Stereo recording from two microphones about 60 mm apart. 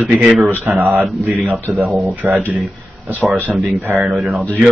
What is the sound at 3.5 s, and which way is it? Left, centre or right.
Speech, centre.